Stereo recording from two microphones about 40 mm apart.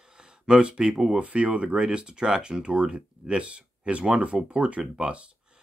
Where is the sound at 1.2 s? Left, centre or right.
Right.